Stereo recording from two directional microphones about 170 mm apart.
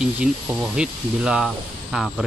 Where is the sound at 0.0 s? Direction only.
5° right (ahead or behind).